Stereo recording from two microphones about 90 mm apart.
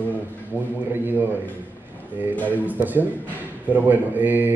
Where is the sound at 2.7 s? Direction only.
20° right (ahead or behind).